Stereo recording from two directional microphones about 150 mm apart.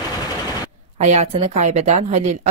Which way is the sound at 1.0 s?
50° right (ahead or behind).